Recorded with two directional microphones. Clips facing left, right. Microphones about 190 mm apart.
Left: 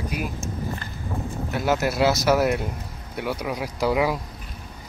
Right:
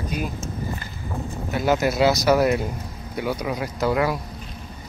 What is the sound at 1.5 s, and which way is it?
Speech, centre (ahead or behind).